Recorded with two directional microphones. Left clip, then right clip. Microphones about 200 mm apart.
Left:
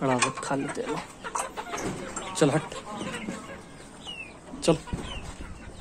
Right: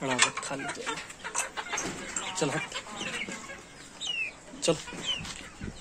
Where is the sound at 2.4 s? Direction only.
15° left (ahead or behind).